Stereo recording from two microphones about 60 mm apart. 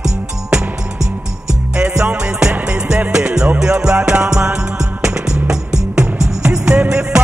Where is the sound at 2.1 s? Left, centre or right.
Centre.